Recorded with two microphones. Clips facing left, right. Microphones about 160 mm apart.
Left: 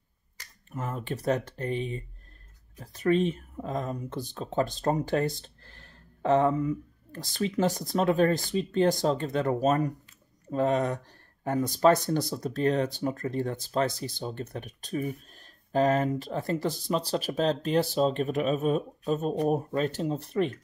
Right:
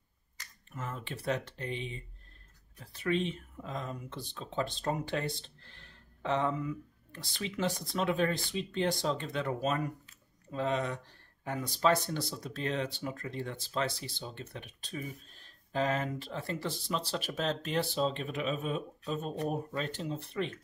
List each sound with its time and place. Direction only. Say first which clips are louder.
0.4 s speech: left 6 dB; 40° left (ahead or behind)